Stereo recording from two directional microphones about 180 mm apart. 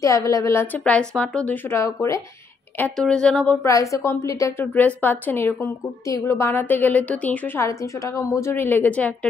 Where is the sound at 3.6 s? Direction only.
15° left (ahead or behind).